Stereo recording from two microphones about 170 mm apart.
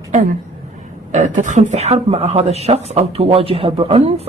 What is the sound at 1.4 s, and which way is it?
Speech, 45° right (ahead or behind).